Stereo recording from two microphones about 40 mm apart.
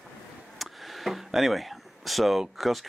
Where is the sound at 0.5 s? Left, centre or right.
Centre.